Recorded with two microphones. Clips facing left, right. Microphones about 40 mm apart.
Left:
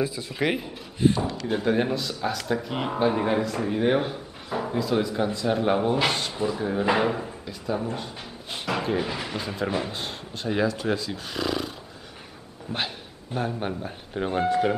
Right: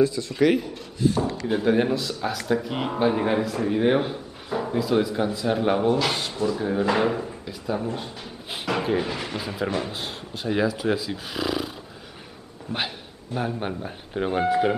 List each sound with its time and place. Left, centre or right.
0.0 s speech: centre
1.0 s speech: left
1.5 s speech: centre
6.3 s speech: centre
7.0 s speech: centre
13.4 s speech: centre